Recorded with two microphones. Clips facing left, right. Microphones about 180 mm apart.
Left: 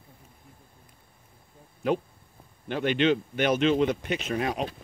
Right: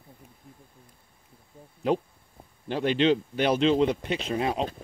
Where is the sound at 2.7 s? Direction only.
30° right (ahead or behind).